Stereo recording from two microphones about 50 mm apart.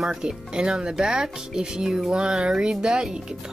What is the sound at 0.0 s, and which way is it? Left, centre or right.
Speech, centre.